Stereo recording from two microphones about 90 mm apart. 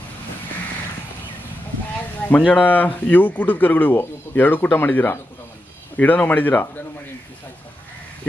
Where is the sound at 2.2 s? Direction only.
15° left (ahead or behind).